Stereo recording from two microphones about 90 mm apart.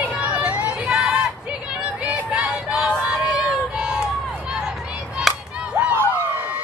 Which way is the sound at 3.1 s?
10° right (ahead or behind).